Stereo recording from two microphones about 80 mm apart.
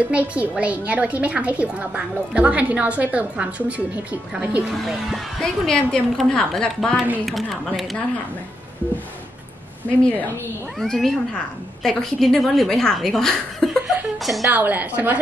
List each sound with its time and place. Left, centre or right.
0.1 s a woman's voice: centre
4.7 s speech: centre
10.8 s speech: centre
13.8 s chuckle: centre
14.5 s a woman's voice: right